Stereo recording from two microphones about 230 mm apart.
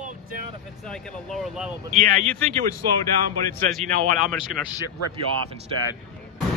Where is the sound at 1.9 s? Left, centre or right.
Right.